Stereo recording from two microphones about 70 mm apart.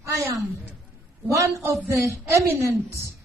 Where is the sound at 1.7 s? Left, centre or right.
Right.